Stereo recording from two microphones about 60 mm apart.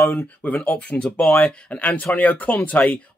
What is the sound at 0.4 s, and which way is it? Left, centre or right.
Speech, left.